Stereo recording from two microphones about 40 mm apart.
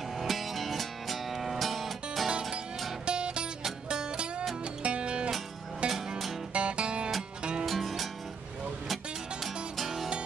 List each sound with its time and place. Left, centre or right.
0.2 s music: centre
3.1 s music: right
5.9 s music: centre
6.5 s music: right
7.6 s music: centre